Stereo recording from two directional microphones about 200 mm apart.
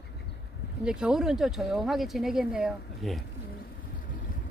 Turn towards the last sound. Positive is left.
turn(degrees=40)  # may be behind; listen again after turning